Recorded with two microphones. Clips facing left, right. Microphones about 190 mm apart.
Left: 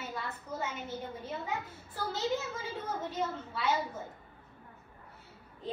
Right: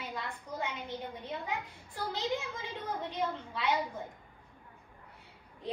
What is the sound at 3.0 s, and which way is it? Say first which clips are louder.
Speech: even; 5° left (ahead or behind).